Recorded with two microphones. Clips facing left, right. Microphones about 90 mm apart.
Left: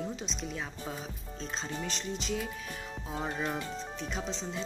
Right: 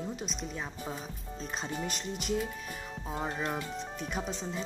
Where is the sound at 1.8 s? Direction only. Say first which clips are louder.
Even; 55° right (ahead or behind).